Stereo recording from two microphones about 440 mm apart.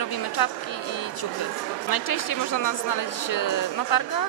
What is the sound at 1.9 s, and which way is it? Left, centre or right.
Speech, left.